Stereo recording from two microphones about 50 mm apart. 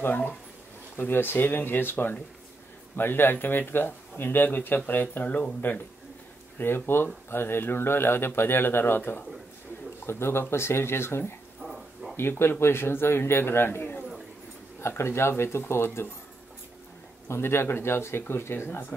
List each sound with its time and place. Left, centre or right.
0.0 s speech: left
5.6 s speech: left
10.0 s speech: left
11.6 s a sound: centre
12.2 s speech: left
14.8 s speech: left
17.3 s speech: left